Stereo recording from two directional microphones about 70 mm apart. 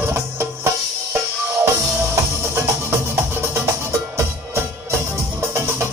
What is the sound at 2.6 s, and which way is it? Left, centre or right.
Music, right.